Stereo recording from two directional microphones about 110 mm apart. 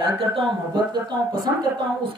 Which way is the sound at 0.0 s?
55° right (ahead or behind).